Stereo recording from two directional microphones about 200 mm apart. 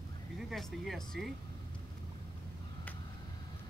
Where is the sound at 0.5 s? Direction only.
Centre (ahead or behind).